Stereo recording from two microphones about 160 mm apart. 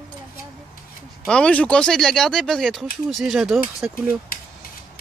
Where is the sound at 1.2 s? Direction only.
5° left (ahead or behind).